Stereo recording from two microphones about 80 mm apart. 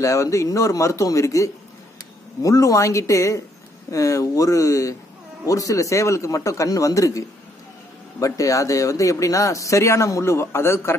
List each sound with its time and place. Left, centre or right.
0.0 s a man's voice: left